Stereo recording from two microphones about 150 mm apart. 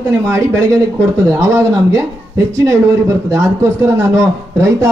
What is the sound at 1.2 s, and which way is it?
A man's voice, 20° right (ahead or behind).